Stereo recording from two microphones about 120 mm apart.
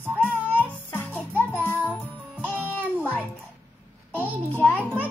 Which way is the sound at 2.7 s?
15° right (ahead or behind).